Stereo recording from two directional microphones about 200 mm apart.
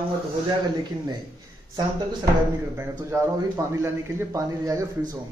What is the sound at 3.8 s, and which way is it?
Speech, 15° right (ahead or behind).